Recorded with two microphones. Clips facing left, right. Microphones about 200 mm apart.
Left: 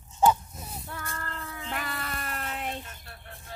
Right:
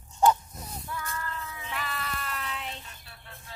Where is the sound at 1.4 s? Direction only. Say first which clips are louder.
Left 2 dB; 55° left (ahead or behind).